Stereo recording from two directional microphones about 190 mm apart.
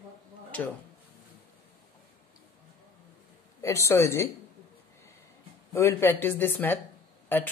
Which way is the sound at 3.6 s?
15° left (ahead or behind).